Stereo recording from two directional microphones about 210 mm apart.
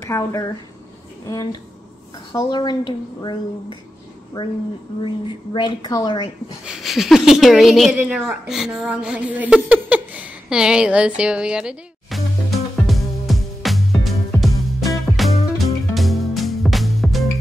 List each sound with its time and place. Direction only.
0.1 s speech: 15° left (ahead or behind)
4.4 s speech: 20° left (ahead or behind)
6.6 s speech: centre (ahead or behind)
15.1 s music: centre (ahead or behind)